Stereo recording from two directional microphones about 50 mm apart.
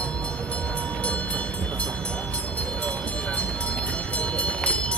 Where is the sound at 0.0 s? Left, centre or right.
Left.